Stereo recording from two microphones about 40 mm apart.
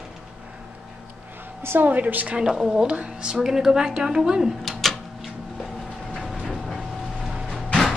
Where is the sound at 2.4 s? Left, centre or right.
Right.